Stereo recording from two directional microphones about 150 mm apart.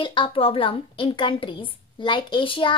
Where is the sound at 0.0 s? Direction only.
35° left (ahead or behind).